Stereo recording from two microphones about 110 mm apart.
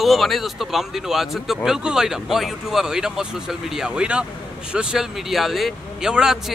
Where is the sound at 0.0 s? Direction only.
Centre (ahead or behind).